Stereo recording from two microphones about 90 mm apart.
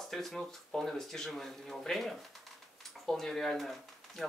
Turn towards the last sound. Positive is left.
turn(degrees=0)  # may be behind; listen again after turning